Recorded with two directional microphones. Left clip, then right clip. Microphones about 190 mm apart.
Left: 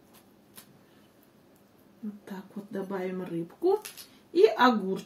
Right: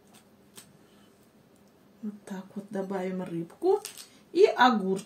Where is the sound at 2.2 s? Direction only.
30° right (ahead or behind).